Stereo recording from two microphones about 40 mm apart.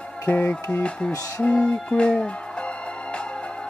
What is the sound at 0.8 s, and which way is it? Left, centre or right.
Speech, left.